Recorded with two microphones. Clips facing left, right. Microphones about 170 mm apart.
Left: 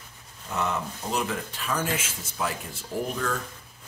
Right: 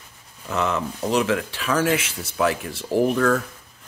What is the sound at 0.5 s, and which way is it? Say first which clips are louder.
Speech: right 5 dB; 90° right.